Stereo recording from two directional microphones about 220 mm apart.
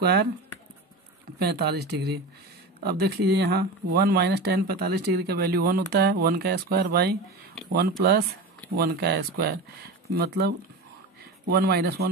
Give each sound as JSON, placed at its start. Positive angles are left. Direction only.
{"t": 0.0, "sound": "speech", "side_deg": -45}
{"t": 1.4, "sound": "speech", "side_deg": -45}
{"t": 11.5, "sound": "speech", "side_deg": -45}